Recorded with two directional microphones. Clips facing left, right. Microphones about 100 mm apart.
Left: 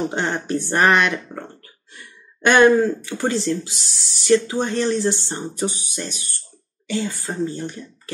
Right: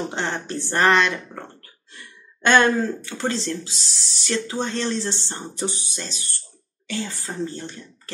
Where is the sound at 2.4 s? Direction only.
15° left (ahead or behind).